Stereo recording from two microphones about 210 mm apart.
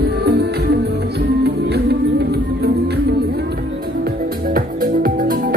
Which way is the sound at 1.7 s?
50° right (ahead or behind).